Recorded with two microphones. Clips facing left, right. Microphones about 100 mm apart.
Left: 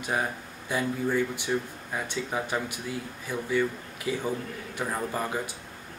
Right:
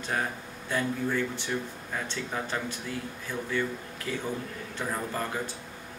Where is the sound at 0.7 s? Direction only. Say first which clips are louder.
Left 1 dB; 15° left (ahead or behind).